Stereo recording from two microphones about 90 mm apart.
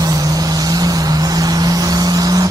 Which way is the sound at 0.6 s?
45° right (ahead or behind).